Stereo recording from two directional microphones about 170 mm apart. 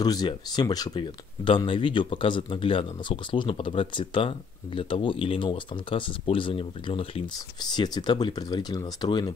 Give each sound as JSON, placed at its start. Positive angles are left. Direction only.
{"t": 0.0, "sound": "speech", "side_deg": 25}